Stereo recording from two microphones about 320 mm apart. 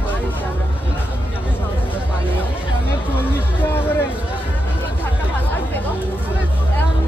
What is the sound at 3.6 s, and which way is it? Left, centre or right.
Speech, centre.